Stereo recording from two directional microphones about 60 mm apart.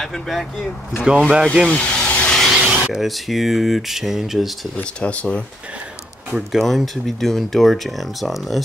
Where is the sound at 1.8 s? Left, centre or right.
Centre.